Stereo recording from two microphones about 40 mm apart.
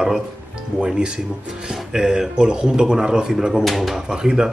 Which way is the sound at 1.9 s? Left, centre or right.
Centre.